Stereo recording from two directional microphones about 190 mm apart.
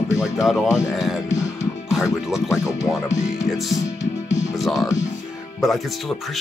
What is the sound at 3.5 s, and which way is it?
Speech, centre (ahead or behind).